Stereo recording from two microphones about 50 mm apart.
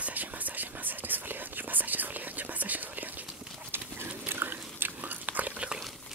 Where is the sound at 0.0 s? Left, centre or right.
Right.